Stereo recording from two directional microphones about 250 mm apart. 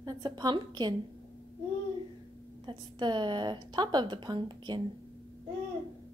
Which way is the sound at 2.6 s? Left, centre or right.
Centre.